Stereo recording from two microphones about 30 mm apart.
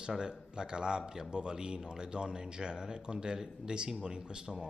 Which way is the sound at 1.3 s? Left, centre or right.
Right.